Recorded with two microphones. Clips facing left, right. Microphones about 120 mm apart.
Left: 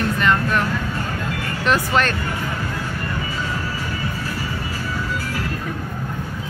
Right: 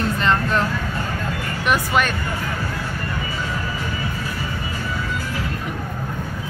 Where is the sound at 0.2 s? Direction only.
30° right (ahead or behind).